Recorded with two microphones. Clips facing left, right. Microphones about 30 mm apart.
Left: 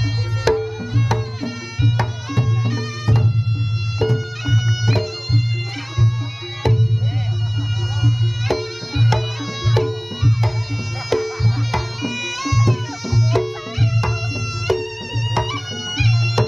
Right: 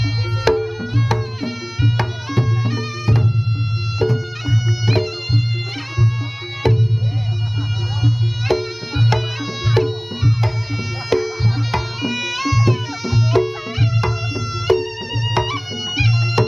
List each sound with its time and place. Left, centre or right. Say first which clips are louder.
0.0 s music: right 2 dB; centre
4.8 s music: right 2 dB; centre
6.6 s music: right 2 dB; centre
8.0 s music: right 1 dB; centre